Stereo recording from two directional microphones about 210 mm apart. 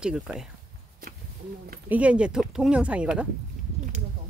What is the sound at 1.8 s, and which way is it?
Speech, 5° right (ahead or behind).